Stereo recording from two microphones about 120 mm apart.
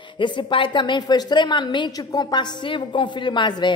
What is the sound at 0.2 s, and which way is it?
A woman's voice, 45° left (ahead or behind).